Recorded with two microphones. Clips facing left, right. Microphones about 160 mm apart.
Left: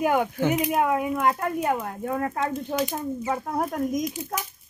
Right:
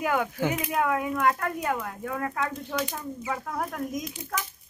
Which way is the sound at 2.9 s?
45° left (ahead or behind).